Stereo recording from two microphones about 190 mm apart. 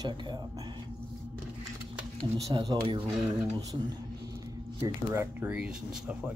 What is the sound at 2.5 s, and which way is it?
Speech, 20° right (ahead or behind).